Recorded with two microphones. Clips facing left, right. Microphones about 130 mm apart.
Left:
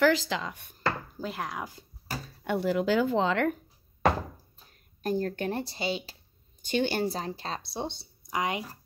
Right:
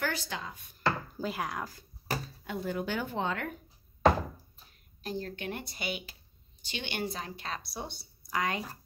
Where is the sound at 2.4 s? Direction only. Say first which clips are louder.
Left 11 dB; 75° left (ahead or behind); by 3.4 s 90° left.